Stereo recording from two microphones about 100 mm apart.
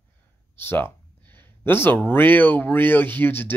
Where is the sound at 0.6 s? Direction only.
20° left (ahead or behind).